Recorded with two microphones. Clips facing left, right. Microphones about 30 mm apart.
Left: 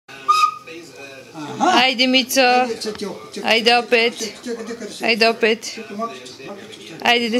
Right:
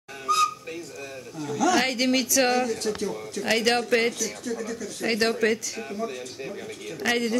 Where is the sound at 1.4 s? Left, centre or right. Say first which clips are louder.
Left 7 dB; left.